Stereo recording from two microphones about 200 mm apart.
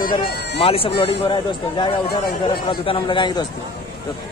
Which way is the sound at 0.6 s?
30° left (ahead or behind).